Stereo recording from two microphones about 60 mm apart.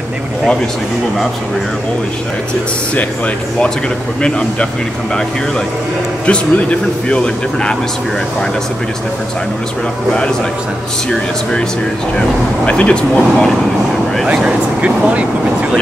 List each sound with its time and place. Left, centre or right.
4.2 s speech: centre
6.2 s speech: left
12.2 s speech: centre
14.4 s speech: right